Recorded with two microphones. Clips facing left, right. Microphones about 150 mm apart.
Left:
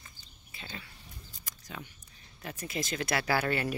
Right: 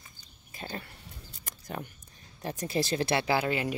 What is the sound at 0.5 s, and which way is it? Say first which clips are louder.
Speech: right 6 dB; 45° right (ahead or behind).